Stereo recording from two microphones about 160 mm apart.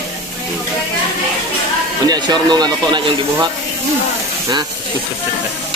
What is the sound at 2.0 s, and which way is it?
Speech, 25° right (ahead or behind).